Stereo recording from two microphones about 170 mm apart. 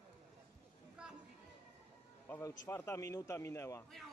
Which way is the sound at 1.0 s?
5° right (ahead or behind).